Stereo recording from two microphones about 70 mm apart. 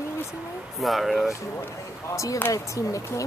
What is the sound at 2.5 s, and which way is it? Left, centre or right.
Speech, left.